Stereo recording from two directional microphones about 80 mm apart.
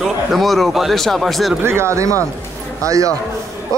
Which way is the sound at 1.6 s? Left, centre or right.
Right.